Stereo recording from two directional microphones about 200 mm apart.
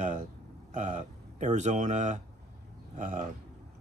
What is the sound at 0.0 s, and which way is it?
Speech, 35° right (ahead or behind).